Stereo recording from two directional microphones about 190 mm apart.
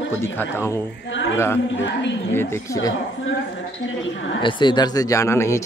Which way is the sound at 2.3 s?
15° left (ahead or behind).